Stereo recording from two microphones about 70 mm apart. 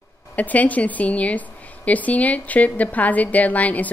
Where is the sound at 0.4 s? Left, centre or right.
Left.